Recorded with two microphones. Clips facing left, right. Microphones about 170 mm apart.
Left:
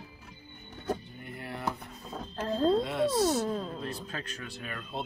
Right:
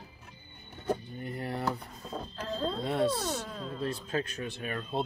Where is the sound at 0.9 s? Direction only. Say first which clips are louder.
Right 2 dB; 35° right (ahead or behind).